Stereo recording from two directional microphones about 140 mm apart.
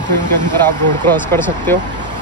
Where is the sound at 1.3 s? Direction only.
15° left (ahead or behind).